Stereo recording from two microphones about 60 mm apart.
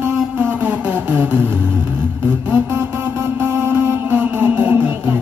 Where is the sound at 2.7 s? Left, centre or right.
Right.